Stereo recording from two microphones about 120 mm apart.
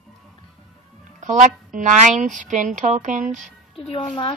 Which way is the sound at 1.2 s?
90° right.